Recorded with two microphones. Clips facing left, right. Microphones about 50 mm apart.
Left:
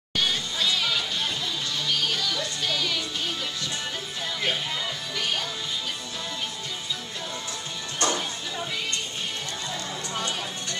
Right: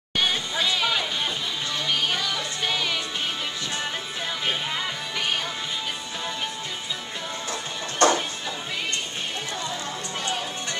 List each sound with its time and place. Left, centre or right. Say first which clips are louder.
0.2 s music: right 2 dB; centre
8.0 s music: right 7 dB; right